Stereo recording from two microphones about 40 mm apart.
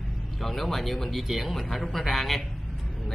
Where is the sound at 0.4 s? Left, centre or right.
Centre.